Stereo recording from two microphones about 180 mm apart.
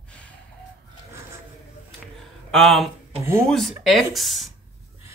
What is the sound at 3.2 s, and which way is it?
Speech, 15° right (ahead or behind).